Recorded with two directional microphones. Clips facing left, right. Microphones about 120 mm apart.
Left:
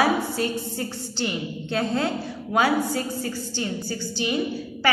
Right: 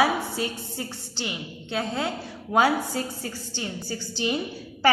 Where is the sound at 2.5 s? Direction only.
25° right (ahead or behind).